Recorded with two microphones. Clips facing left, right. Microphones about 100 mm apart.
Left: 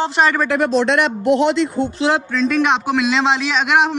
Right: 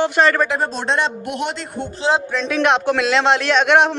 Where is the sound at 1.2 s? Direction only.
45° right (ahead or behind).